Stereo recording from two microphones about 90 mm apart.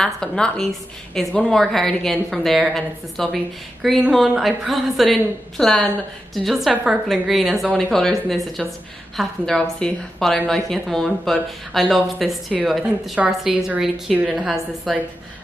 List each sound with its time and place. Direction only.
0.0 s a woman's voice: 5° left (ahead or behind)
6.7 s a woman's voice: 15° right (ahead or behind)
7.1 s a woman's voice: centre (ahead or behind)